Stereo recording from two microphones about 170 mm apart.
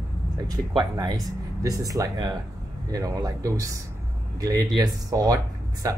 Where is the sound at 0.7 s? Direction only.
25° right (ahead or behind).